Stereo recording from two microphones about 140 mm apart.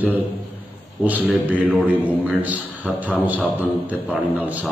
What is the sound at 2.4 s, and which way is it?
A man's voice, 10° right (ahead or behind).